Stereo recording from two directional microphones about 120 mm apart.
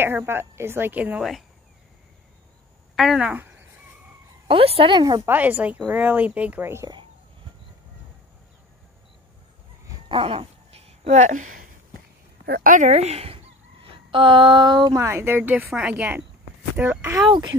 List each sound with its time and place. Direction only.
0.0 s speech: 20° right (ahead or behind)
3.0 s speech: 5° right (ahead or behind)
3.3 s a sound: 15° right (ahead or behind)
4.5 s a woman's voice: 50° right (ahead or behind)
5.2 s speech: 15° right (ahead or behind)
10.0 s a sound: 45° right (ahead or behind); by 11.5 s 90° right
12.7 s speech: 70° right (ahead or behind); by 15.0 s 40° right (ahead or behind)
15.0 s speech: 20° right (ahead or behind)